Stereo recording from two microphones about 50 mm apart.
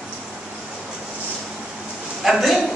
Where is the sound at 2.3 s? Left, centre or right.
Centre.